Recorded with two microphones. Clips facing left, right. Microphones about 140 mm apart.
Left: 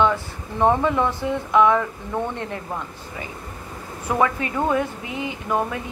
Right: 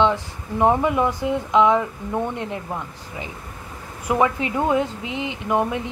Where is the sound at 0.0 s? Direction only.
15° right (ahead or behind).